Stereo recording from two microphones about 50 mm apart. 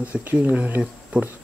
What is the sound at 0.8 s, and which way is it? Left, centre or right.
Cutlery, right.